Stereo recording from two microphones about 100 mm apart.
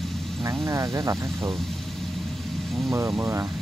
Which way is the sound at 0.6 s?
35° right (ahead or behind).